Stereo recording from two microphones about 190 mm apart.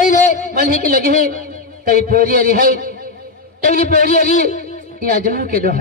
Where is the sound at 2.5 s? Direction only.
50° right (ahead or behind).